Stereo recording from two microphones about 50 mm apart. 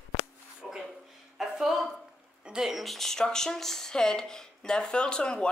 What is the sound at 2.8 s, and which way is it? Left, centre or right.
Speech, centre.